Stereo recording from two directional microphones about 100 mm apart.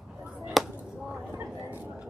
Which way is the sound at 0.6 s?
Centre (ahead or behind).